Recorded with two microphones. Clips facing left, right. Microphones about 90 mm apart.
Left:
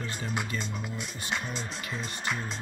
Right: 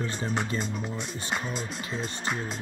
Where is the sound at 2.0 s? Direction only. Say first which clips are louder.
Right 1 dB; 40° right (ahead or behind).